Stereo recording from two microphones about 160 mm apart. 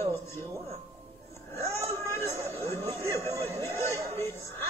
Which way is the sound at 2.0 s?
15° left (ahead or behind).